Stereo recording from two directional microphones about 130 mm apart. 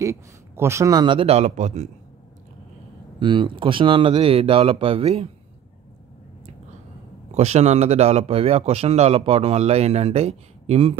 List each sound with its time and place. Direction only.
0.0 s speech: 20° right (ahead or behind)
1.0 s speech: 45° right (ahead or behind)
3.2 s speech: 40° right (ahead or behind)
7.3 s speech: 55° right (ahead or behind)